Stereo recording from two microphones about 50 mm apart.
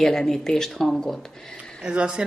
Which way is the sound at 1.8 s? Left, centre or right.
Centre.